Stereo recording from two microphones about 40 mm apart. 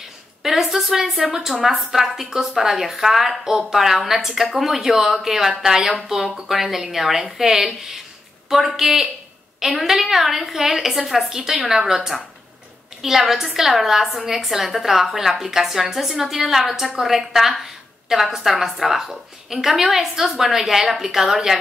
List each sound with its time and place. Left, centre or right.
0.4 s a woman's voice: centre
11.3 s a woman's voice: centre